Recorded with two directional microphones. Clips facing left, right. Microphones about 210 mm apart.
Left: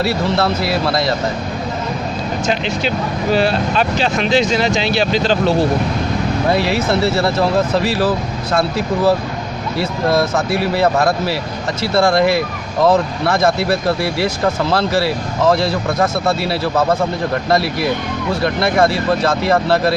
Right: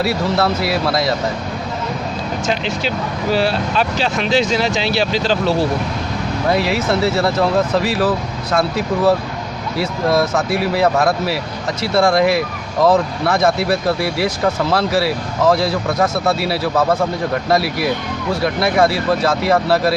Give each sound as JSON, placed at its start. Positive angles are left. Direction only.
{"t": 0.0, "sound": "speech", "side_deg": 0}
{"t": 3.3, "sound": "speech", "side_deg": 55}
{"t": 4.3, "sound": "speech", "side_deg": -5}
{"t": 6.6, "sound": "speech", "side_deg": 0}